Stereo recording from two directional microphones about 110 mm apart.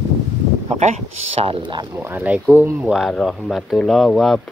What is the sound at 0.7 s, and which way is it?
Speech, 75° right (ahead or behind).